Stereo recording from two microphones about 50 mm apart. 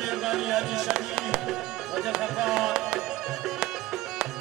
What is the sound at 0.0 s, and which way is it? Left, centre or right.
Music, centre.